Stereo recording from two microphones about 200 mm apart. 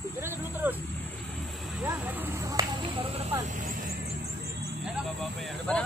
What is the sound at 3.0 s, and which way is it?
Vehicle, 30° right (ahead or behind).